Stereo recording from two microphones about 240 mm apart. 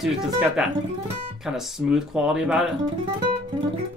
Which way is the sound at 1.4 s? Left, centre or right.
Centre.